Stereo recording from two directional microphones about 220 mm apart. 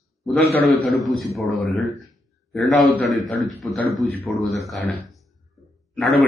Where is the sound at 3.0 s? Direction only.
Centre (ahead or behind).